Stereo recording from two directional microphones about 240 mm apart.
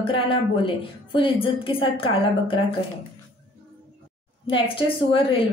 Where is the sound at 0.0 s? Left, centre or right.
Left.